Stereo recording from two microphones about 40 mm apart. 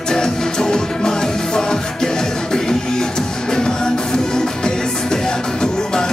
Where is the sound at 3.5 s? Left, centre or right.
Centre.